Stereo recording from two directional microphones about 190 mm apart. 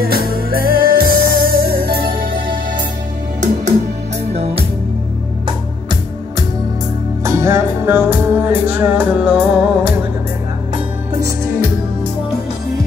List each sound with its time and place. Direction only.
0.0 s music: 50° right (ahead or behind)
4.3 s music: 35° right (ahead or behind)
7.2 s music: 15° right (ahead or behind)